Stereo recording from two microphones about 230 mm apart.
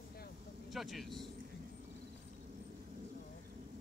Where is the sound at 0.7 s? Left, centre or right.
Centre.